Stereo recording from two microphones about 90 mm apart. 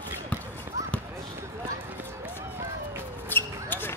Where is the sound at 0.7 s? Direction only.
40° right (ahead or behind).